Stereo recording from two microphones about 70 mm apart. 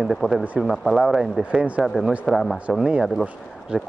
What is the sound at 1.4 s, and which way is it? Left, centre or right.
Speech, centre.